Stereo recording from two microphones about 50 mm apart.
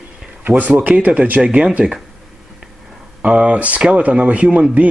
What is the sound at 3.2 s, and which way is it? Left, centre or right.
Speech, right.